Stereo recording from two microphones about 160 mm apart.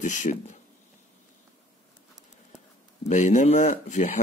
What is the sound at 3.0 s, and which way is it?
Speech, 50° left (ahead or behind).